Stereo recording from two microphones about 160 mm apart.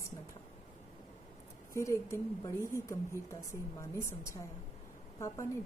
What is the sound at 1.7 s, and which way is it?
A woman's voice, 20° left (ahead or behind).